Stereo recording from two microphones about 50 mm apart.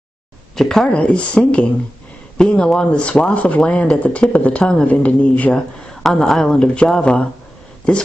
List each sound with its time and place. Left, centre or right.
0.6 s speech: centre
0.8 s speech: left
5.5 s speech: centre
7.0 s speech: left